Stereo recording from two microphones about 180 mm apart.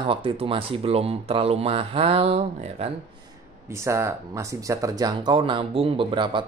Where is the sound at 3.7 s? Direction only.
15° right (ahead or behind).